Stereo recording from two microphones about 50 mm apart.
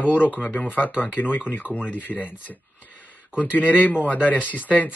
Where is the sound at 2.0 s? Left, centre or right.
Left.